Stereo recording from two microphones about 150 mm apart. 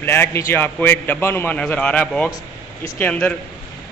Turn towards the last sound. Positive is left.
turn(degrees=10)  # may be behind; listen again after turning